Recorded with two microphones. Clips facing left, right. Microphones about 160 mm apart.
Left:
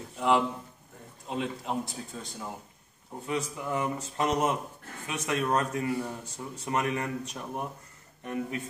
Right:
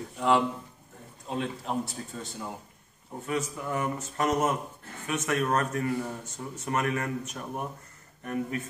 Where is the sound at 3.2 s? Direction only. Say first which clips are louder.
Right 1 dB; 15° left (ahead or behind).